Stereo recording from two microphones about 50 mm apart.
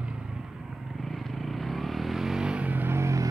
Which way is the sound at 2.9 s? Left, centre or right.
Right.